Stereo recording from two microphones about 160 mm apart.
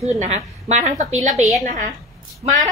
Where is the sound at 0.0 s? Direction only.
45° right (ahead or behind).